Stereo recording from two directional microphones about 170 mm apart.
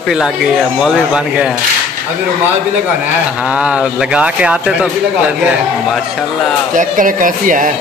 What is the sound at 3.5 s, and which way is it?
Speech, 5° right (ahead or behind).